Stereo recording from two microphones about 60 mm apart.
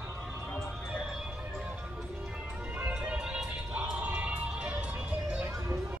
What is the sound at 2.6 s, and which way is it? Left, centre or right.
Music, right.